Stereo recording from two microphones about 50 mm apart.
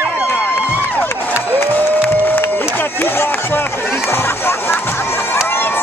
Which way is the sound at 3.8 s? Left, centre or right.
Centre.